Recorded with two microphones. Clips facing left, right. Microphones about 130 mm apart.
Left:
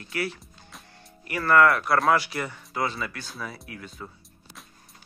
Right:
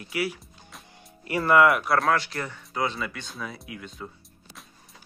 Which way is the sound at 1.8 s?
Centre (ahead or behind).